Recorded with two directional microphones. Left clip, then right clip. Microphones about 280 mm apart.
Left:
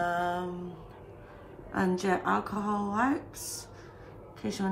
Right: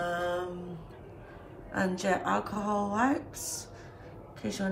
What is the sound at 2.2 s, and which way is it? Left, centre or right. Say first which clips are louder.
Speech: left 1 dB; centre.